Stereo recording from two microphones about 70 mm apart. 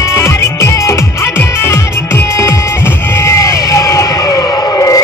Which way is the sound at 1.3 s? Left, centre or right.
Left.